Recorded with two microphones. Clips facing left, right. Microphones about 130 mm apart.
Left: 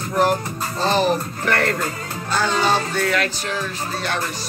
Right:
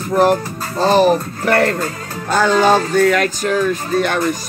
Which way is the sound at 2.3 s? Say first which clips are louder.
Right 7 dB; 50° right (ahead or behind).